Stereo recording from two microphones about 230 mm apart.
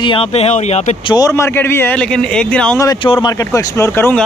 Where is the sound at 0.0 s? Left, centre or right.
Left.